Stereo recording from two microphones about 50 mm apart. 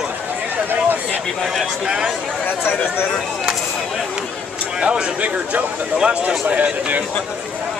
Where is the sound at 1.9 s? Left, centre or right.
Centre.